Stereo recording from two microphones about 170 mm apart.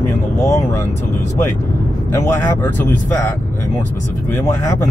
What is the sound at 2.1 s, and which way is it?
Speech, 15° left (ahead or behind).